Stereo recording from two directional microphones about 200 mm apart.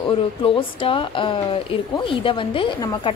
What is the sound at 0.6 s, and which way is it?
Speech, 25° left (ahead or behind).